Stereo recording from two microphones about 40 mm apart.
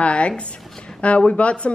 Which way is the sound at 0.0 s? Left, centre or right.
Left.